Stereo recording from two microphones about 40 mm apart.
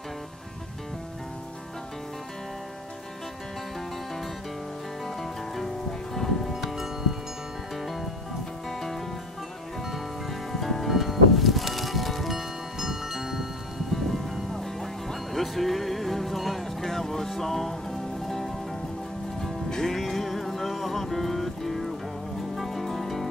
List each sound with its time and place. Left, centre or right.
5.0 s music: centre
6.5 s music: centre
10.5 s music: centre
14.5 s music: centre